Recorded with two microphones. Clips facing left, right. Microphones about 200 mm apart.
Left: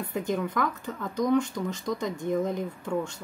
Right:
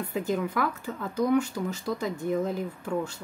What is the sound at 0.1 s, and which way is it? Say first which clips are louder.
Speech: even; 5° right (ahead or behind).